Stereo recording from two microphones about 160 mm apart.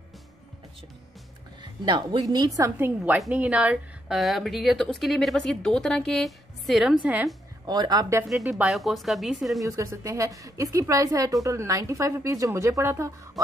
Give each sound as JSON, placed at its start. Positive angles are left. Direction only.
{"t": 1.6, "sound": "a woman's voice", "side_deg": -30}
{"t": 7.6, "sound": "a woman's voice", "side_deg": -25}
{"t": 8.3, "sound": "speech", "side_deg": 0}
{"t": 9.6, "sound": "a woman's voice", "side_deg": -20}